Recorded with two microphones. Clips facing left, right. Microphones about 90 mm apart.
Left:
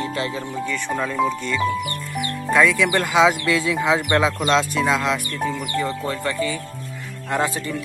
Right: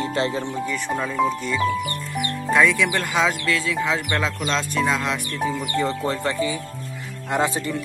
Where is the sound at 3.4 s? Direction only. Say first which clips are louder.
Left 3 dB; 20° left (ahead or behind); by 5.5 s centre (ahead or behind).